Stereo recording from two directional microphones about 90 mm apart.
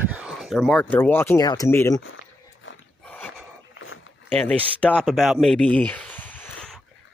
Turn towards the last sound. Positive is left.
turn(degrees=20)  # may be behind; listen again after turning